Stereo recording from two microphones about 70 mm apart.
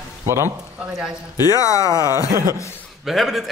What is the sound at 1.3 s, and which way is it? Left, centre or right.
Speech, left.